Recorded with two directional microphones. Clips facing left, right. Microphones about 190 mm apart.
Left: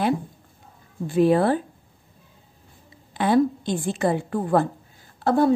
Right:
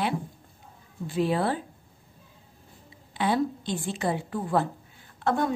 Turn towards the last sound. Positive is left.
turn(degrees=35)  # may be behind; listen again after turning